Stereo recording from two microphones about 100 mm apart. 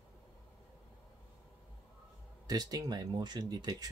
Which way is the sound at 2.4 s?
40° right (ahead or behind).